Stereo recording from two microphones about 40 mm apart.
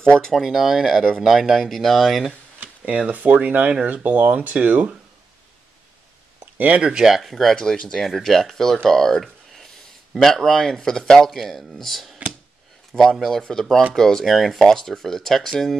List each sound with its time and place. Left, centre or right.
0.0 s speech: centre
0.3 s speech: centre
3.1 s speech: right
4.6 s speech: right
6.4 s a sound: right
6.8 s speech: right
7.1 s speech: centre
7.5 s speech: centre
8.0 s speech: centre
9.2 s a sound: centre
10.1 s speech: centre
13.4 s speech: centre